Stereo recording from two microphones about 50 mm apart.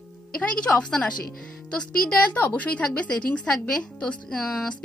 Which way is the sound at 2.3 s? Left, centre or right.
Left.